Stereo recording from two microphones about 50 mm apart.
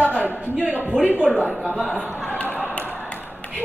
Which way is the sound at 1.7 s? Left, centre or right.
Left.